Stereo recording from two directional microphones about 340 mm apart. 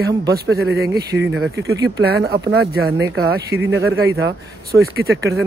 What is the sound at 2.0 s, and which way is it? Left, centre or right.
Speech, right.